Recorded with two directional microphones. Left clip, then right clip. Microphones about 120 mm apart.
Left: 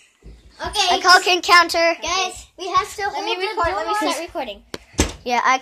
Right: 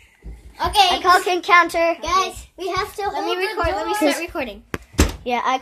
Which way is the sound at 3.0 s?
10° right (ahead or behind).